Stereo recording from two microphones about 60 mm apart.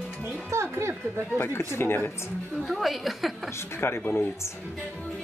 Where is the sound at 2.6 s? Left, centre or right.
Centre.